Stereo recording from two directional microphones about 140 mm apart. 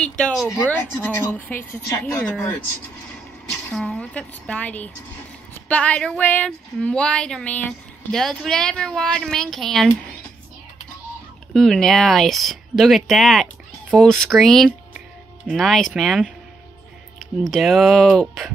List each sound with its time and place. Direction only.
0.5 s a woman's voice: 20° left (ahead or behind)
3.7 s a woman's voice: 5° left (ahead or behind)
11.5 s speech: 5° left (ahead or behind)